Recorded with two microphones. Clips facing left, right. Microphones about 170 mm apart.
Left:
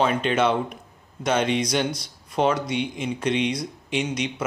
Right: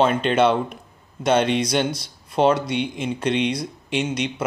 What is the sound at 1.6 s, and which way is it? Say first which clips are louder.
Speech: right 2 dB; 30° right (ahead or behind).